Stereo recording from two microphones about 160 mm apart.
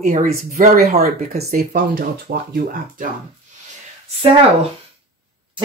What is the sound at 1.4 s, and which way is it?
Speech, 75° right (ahead or behind).